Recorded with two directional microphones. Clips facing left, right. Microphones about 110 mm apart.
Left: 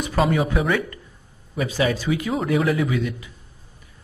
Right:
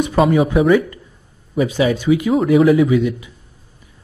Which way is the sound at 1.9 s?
15° right (ahead or behind).